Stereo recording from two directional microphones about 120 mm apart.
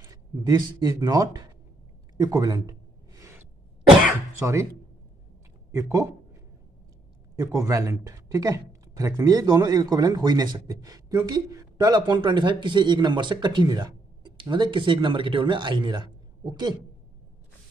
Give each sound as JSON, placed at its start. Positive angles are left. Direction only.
{"t": 0.1, "sound": "speech", "side_deg": -35}
{"t": 2.1, "sound": "a sound", "side_deg": -30}
{"t": 4.4, "sound": "speech", "side_deg": -20}
{"t": 5.7, "sound": "speech", "side_deg": -25}
{"t": 7.3, "sound": "speech", "side_deg": -25}